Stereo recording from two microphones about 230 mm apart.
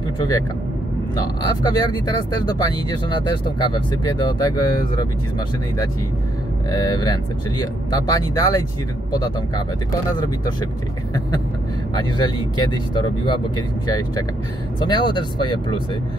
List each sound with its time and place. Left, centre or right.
1.1 s speech: centre
6.7 s speech: centre
11.9 s speech: centre
14.8 s speech: centre